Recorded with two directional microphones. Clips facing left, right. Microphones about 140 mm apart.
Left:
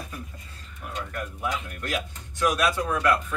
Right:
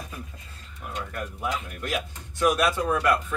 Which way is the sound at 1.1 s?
5° right (ahead or behind).